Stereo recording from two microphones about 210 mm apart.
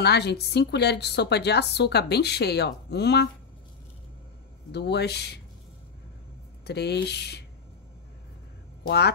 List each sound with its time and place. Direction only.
0.0 s a woman's voice: 50° left (ahead or behind)
4.7 s a woman's voice: 50° left (ahead or behind)
6.6 s a woman's voice: 50° left (ahead or behind)
8.8 s speech: 50° left (ahead or behind)